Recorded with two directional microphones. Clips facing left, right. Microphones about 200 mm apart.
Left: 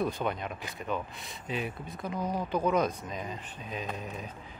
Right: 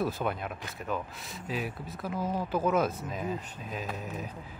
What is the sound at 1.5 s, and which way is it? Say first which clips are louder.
Speech: even; 5° right (ahead or behind).